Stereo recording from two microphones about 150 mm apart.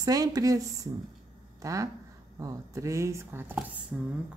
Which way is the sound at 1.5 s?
20° right (ahead or behind).